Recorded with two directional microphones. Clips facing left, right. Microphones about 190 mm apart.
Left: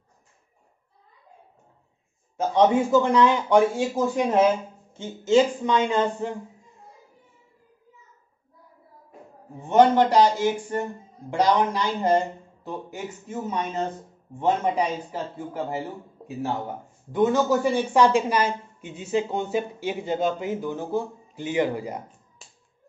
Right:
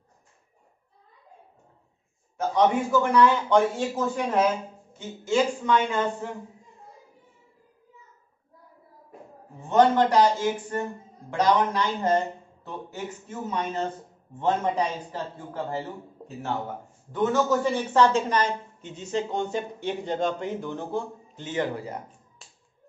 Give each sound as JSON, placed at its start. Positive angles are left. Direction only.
{"t": 2.5, "sound": "a woman's voice", "side_deg": 20}
{"t": 9.6, "sound": "a woman's voice", "side_deg": 20}